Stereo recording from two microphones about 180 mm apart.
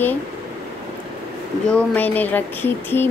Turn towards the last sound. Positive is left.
turn(degrees=10)  # may be behind; listen again after turning